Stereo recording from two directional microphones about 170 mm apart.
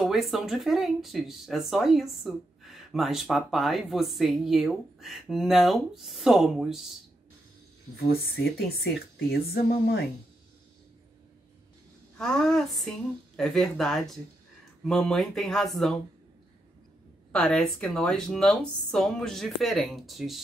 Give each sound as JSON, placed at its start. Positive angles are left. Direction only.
{"t": 0.0, "sound": "speech", "side_deg": 0}
{"t": 7.9, "sound": "speech", "side_deg": 65}
{"t": 12.2, "sound": "speech", "side_deg": 5}
{"t": 17.3, "sound": "speech", "side_deg": 5}